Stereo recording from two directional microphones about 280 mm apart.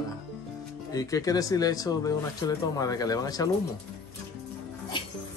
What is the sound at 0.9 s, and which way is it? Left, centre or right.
Speech, centre.